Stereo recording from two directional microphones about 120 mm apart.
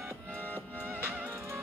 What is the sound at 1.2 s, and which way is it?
Music, 20° right (ahead or behind).